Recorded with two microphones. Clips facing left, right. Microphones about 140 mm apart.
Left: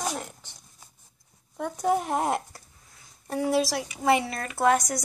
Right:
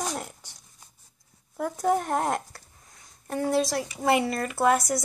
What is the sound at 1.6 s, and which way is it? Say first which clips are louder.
Speech: right 1 dB; centre (ahead or behind).